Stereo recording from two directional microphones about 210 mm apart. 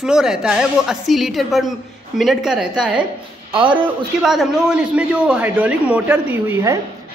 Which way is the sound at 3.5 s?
25° right (ahead or behind).